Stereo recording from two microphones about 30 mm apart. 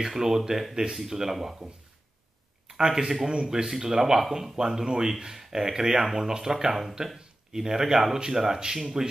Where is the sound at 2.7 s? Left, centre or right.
Centre.